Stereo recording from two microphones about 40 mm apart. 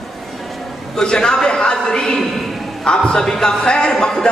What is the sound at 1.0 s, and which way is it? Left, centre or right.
A man's voice, left.